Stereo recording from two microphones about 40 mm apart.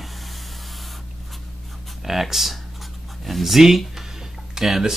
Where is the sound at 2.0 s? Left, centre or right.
Centre.